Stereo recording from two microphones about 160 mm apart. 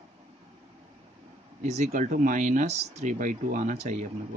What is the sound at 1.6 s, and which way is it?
Speech, 45° right (ahead or behind).